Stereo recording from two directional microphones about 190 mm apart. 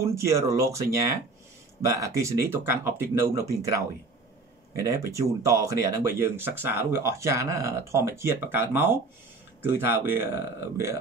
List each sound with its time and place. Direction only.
0.0 s speech: 15° right (ahead or behind)
1.9 s speech: 15° right (ahead or behind)
4.8 s speech: 15° right (ahead or behind)